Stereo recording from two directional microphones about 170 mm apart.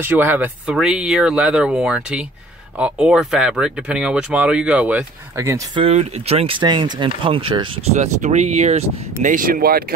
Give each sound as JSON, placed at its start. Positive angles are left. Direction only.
{"t": 0.0, "sound": "speech", "side_deg": -10}
{"t": 5.8, "sound": "speech", "side_deg": -35}
{"t": 7.9, "sound": "speech", "side_deg": -45}